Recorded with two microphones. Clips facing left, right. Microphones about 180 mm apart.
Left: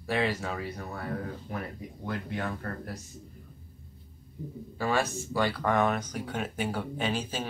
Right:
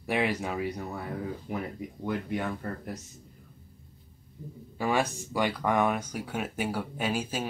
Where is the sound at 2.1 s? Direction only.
15° right (ahead or behind).